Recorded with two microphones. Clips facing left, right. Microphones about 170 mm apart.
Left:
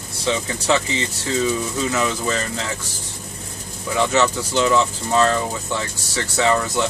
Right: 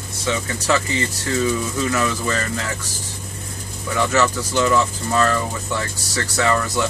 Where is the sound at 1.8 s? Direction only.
20° left (ahead or behind).